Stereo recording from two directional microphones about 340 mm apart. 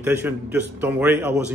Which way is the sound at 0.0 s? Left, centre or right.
Centre.